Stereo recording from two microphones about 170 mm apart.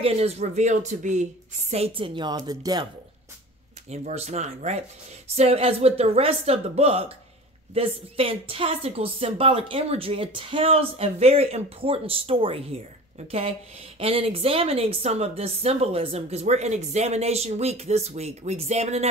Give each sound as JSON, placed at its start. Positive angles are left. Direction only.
{"t": 0.0, "sound": "a woman's voice", "side_deg": -35}
{"t": 3.9, "sound": "a woman's voice", "side_deg": -40}